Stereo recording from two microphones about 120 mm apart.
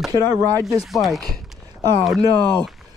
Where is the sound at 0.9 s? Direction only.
Centre (ahead or behind).